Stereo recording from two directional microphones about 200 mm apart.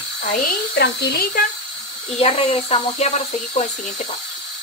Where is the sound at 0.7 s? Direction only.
55° left (ahead or behind).